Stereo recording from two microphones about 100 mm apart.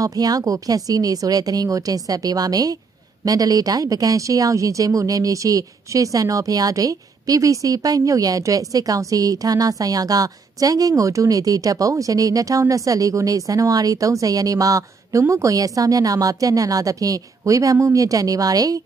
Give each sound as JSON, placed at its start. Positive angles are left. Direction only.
{"t": 0.0, "sound": "speech", "side_deg": -35}